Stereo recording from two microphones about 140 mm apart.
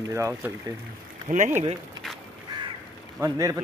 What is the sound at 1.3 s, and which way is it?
Speech, 75° right (ahead or behind).